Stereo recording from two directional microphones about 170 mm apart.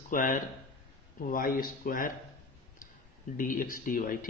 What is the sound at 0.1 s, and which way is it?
A man's voice, 55° left (ahead or behind).